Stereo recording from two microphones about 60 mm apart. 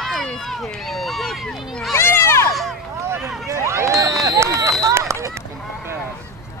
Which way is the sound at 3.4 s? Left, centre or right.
Right.